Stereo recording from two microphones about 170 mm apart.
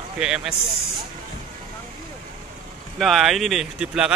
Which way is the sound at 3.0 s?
Centre (ahead or behind).